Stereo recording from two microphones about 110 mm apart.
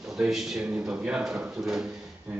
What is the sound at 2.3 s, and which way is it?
Speech, 15° right (ahead or behind).